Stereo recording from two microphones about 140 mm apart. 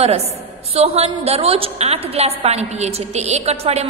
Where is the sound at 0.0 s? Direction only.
45° right (ahead or behind).